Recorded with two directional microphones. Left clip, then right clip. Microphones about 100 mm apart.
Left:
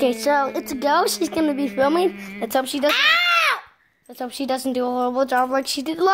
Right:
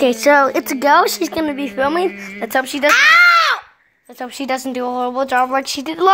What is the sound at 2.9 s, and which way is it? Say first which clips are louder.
Speech: right 8 dB; 20° right (ahead or behind).